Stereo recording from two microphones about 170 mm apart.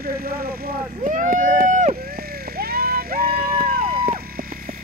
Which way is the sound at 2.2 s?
65° right (ahead or behind).